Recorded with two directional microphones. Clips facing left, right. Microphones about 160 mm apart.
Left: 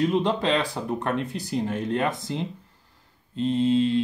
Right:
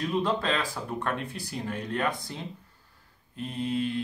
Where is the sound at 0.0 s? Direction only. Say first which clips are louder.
Left 5 dB; 20° left (ahead or behind).